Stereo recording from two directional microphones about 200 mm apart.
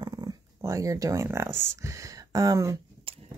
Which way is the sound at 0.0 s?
20° right (ahead or behind).